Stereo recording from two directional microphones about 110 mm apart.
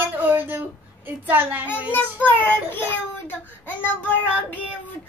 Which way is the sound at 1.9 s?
15° left (ahead or behind).